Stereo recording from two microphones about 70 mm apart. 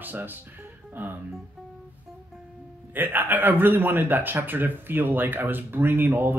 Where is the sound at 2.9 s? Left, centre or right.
Right.